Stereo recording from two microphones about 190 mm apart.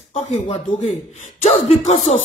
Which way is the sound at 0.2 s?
40° left (ahead or behind).